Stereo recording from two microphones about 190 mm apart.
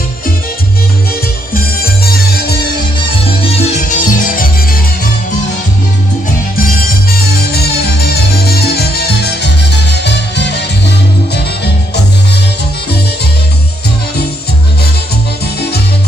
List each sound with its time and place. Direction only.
1.5 s music: 55° left (ahead or behind)
3.8 s music: 45° left (ahead or behind)
7.2 s music: 55° left (ahead or behind)